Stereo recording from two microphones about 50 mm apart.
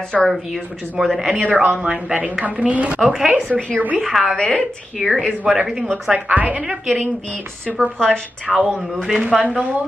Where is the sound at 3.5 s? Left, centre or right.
Left.